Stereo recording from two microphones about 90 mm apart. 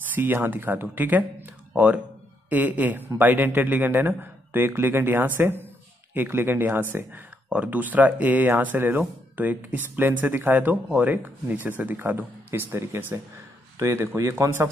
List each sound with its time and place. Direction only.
0.1 s speech: 20° right (ahead or behind)
2.5 s speech: 20° right (ahead or behind)